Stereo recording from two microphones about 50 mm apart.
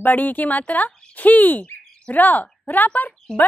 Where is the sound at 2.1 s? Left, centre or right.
Left.